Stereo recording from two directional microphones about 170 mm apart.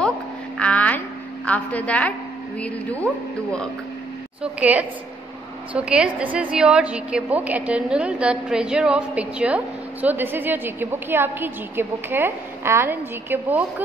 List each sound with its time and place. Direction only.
0.6 s a sound: 10° left (ahead or behind)
2.6 s a woman's voice: 10° left (ahead or behind)
4.4 s a woman's voice: 10° right (ahead or behind)